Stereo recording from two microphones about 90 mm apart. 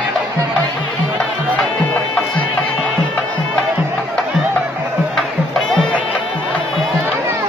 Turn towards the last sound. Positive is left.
turn(degrees=0)  # may be behind; listen again after turning